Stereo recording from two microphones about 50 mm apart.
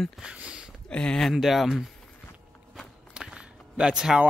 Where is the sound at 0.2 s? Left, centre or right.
Right.